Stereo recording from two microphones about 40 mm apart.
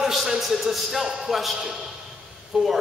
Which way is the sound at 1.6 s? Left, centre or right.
Centre.